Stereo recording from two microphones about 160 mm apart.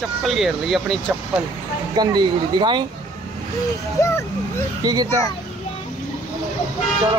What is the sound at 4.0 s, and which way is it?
Speech, 20° left (ahead or behind).